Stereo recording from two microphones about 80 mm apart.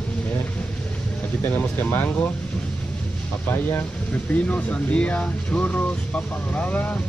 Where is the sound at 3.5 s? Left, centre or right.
Left.